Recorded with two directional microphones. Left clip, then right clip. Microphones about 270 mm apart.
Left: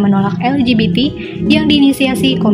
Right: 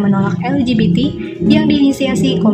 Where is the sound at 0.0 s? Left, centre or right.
Left.